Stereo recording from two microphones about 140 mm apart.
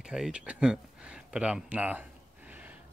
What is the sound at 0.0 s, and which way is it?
Speech, 5° right (ahead or behind).